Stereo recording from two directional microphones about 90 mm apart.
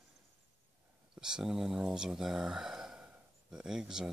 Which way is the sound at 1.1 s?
5° right (ahead or behind).